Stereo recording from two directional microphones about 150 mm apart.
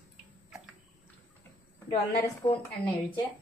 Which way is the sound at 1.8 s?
30° left (ahead or behind).